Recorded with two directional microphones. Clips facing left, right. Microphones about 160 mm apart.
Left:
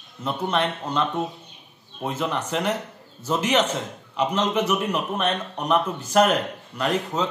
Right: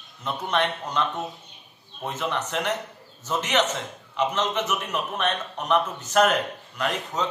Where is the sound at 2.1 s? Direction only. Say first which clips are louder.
Left 2 dB; 10° left (ahead or behind).